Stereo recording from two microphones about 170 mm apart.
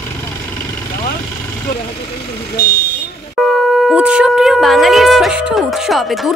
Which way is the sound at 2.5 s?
65° left (ahead or behind).